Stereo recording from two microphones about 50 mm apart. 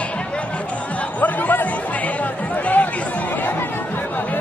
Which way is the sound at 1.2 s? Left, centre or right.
Left.